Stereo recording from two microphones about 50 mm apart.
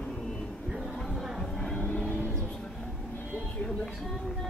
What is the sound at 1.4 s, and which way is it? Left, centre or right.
Music, centre.